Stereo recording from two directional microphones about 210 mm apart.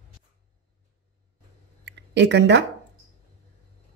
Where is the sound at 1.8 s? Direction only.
55° right (ahead or behind).